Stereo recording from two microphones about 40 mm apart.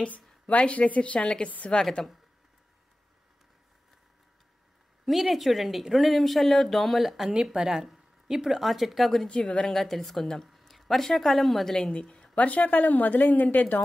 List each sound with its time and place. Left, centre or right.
0.5 s a woman's voice: left
2.0 s speech: centre
5.0 s speech: centre
7.5 s speech: centre
9.3 s a woman's voice: left
9.7 s speech: centre
10.5 s a sound: centre
11.1 s speech: centre
11.9 s speech: left
12.4 s a woman's voice: left